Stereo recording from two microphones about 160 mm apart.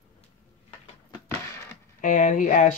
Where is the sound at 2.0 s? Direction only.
55° left (ahead or behind).